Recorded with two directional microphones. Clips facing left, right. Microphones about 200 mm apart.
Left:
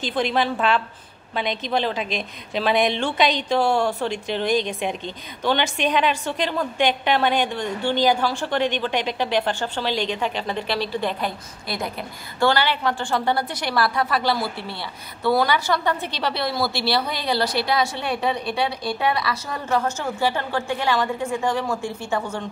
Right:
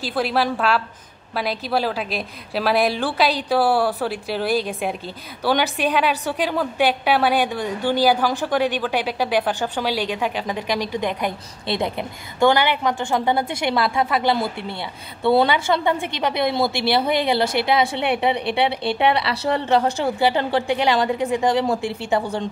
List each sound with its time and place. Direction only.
0.0 s a woman's voice: 5° right (ahead or behind); by 17.8 s 20° right (ahead or behind)
18.7 s speech: 65° right (ahead or behind)
18.9 s a woman's voice: 25° right (ahead or behind)
20.2 s a woman's voice: 15° right (ahead or behind)